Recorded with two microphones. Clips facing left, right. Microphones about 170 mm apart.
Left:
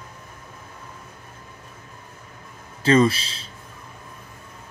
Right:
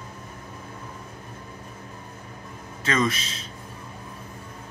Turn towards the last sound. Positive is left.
turn(degrees=30)  # may be behind; listen again after turning